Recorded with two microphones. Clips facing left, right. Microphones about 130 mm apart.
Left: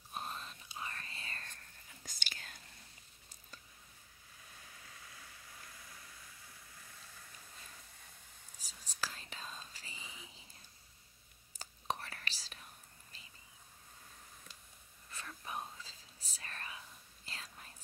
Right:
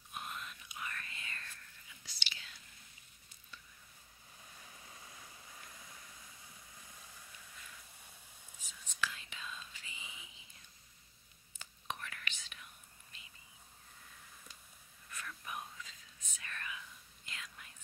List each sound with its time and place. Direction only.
0.1 s whispering: 35° left (ahead or behind)
4.8 s a sound: 25° right (ahead or behind)
8.5 s whispering: 35° left (ahead or behind)
11.5 s whispering: 35° left (ahead or behind)
15.0 s whispering: 30° left (ahead or behind)